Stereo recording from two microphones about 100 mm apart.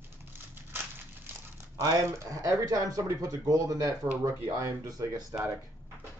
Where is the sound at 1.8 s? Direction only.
35° right (ahead or behind).